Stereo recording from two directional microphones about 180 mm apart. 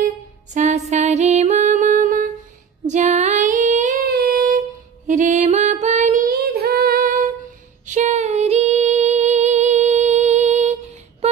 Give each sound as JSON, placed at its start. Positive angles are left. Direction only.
{"t": 0.6, "sound": "music", "side_deg": -40}
{"t": 2.9, "sound": "female singing", "side_deg": -40}
{"t": 4.1, "sound": "music", "side_deg": -55}
{"t": 7.8, "sound": "female singing", "side_deg": -40}